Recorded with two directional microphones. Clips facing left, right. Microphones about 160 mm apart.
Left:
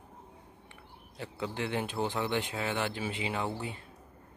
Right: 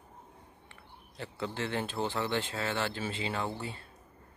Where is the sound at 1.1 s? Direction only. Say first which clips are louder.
Even; 10° left (ahead or behind).